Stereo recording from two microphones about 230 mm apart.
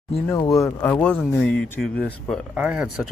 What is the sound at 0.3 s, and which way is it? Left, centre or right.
Speech, centre.